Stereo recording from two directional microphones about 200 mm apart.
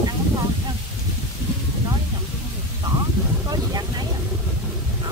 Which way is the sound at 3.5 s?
20° right (ahead or behind).